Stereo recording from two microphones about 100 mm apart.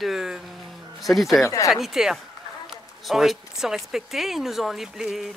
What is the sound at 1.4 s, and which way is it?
Speech, 35° left (ahead or behind).